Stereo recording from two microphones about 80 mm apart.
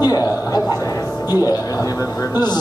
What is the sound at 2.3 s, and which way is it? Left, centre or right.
Speech, left.